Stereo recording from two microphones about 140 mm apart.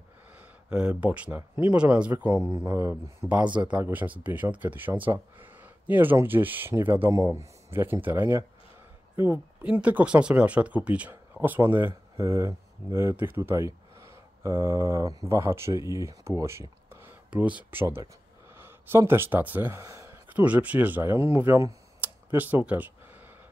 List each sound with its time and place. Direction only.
0.7 s speech: 5° right (ahead or behind)